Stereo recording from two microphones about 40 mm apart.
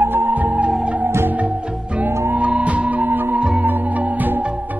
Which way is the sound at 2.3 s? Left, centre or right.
Right.